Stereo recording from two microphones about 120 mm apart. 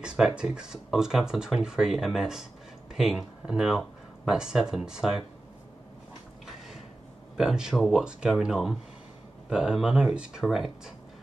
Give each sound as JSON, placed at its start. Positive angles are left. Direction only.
{"t": 0.0, "sound": "speech", "side_deg": -5}
{"t": 7.3, "sound": "speech", "side_deg": -5}